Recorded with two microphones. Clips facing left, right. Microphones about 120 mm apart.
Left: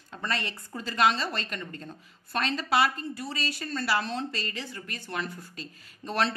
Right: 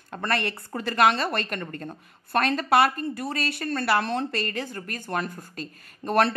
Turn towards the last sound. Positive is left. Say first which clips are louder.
# right 6 dB
turn(degrees=-55)  # may be behind; listen again after turning